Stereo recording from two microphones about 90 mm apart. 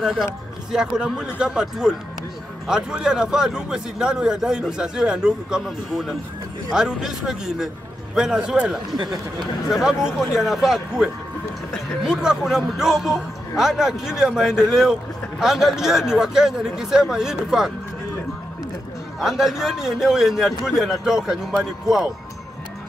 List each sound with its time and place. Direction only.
0.0 s a man's voice: centre (ahead or behind)
8.9 s speech: 55° right (ahead or behind)
9.7 s speech: 5° right (ahead or behind)
19.1 s speech: 5° right (ahead or behind)